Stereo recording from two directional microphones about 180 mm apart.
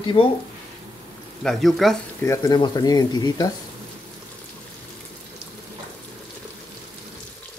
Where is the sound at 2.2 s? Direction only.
20° left (ahead or behind).